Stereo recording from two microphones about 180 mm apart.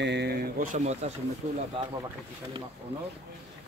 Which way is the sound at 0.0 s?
70° right (ahead or behind).